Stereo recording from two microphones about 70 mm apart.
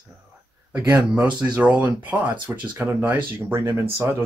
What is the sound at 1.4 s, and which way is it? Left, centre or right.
Speech, centre.